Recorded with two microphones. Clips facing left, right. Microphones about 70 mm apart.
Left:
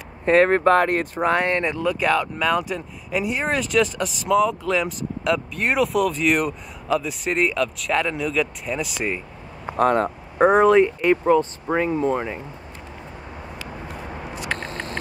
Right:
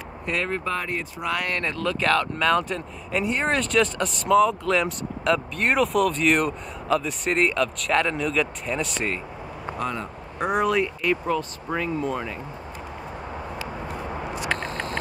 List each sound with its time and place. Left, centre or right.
0.2 s speech: left
1.2 s speech: left; by 9.2 s centre
9.8 s speech: left
10.4 s speech: left